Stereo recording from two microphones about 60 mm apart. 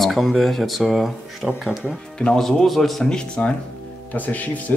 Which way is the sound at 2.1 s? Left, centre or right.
Centre.